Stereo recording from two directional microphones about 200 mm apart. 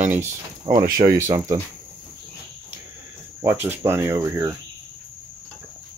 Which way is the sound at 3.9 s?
10° right (ahead or behind).